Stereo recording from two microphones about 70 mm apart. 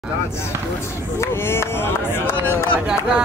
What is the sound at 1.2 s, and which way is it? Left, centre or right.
Speech, left.